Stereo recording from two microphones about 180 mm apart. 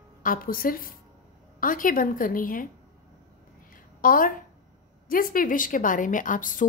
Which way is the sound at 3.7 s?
50° left (ahead or behind).